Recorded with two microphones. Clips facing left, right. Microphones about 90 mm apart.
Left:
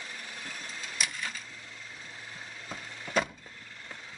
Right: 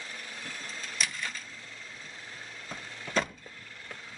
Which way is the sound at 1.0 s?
5° left (ahead or behind).